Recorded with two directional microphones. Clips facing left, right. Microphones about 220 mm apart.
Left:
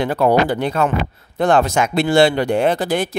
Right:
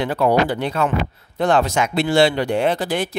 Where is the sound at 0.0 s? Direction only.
45° left (ahead or behind).